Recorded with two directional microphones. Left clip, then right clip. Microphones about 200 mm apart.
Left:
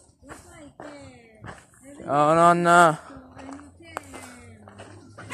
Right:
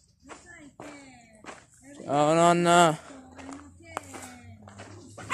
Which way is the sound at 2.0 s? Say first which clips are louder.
Left 4 dB; 5° right (ahead or behind).